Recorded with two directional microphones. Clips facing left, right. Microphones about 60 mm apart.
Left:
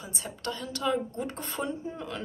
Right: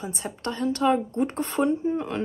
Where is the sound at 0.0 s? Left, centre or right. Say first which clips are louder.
Right 5 dB; right.